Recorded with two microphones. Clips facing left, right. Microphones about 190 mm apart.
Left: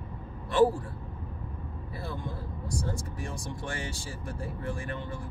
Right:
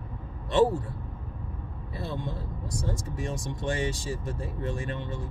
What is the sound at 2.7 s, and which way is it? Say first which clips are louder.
Speech: right 1 dB; 20° right (ahead or behind).